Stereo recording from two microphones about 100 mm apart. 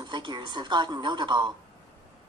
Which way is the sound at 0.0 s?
50° right (ahead or behind).